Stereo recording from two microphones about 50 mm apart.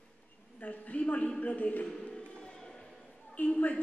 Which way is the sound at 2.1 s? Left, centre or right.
Centre.